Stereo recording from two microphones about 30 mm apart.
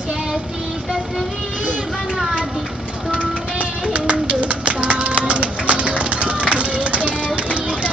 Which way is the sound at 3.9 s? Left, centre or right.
Right.